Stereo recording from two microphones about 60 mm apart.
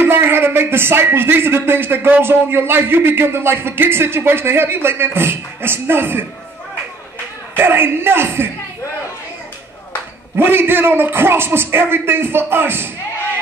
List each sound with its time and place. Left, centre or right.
0.0 s speech: right
7.5 s speech: right
10.3 s speech: right